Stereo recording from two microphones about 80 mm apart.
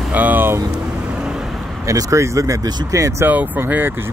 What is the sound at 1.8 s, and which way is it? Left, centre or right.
Speech, right.